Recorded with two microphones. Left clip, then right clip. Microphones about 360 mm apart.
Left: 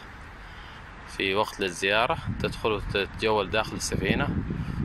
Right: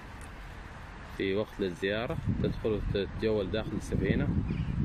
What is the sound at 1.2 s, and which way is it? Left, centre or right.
Speech, left.